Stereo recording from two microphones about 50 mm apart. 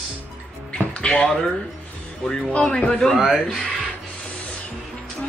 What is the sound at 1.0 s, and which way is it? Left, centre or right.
A woman's voice, centre.